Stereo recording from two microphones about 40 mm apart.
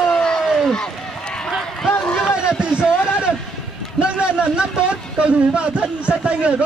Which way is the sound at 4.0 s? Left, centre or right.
Right.